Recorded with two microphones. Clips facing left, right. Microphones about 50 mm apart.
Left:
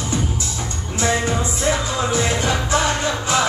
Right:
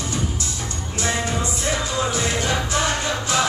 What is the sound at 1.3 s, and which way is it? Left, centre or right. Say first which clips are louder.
Music: left 4 dB; centre.